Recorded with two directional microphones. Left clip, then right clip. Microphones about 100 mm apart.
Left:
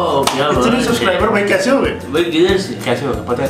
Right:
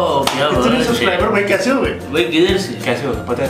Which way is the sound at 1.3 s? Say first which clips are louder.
Left 1 dB; 15° left (ahead or behind).